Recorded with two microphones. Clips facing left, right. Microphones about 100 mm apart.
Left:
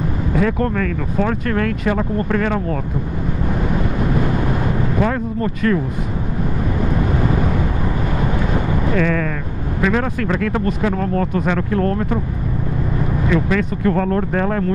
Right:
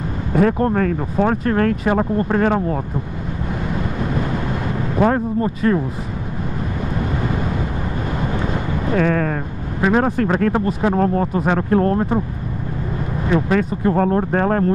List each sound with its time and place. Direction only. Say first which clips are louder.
0.3 s vehicle: right 3 dB; 40° right (ahead or behind)
0.7 s speech: right 2 dB; 35° right (ahead or behind)
4.9 s speech: right 5 dB; 35° right (ahead or behind)
5.4 s speech: left 3 dB; 25° right (ahead or behind)
8.9 s speech: right 3 dB; 40° right (ahead or behind)
13.3 s speech: right 2 dB; 40° right (ahead or behind)